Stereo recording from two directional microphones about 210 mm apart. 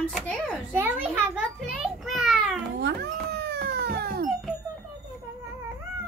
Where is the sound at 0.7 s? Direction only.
10° right (ahead or behind).